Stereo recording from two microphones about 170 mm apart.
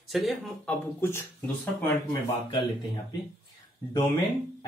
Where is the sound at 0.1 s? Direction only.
Centre (ahead or behind).